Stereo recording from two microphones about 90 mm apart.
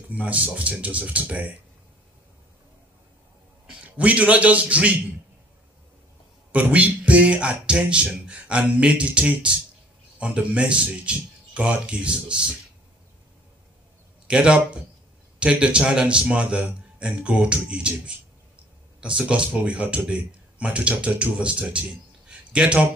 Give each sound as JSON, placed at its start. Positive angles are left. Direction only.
{"t": 0.1, "sound": "speech", "side_deg": -15}
{"t": 3.6, "sound": "a man's voice", "side_deg": -15}
{"t": 6.5, "sound": "speech", "side_deg": -15}
{"t": 14.2, "sound": "speech", "side_deg": -10}
{"t": 22.3, "sound": "a sound", "side_deg": -10}